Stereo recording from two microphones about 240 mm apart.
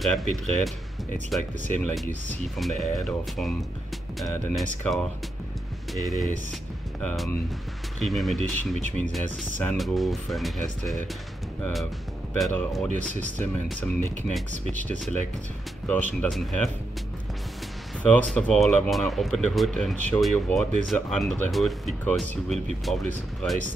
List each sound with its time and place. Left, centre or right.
0.0 s speech: centre
5.9 s speech: centre
8.0 s speech: centre
12.4 s speech: centre
14.6 s speech: right
15.9 s speech: centre
18.0 s speech: centre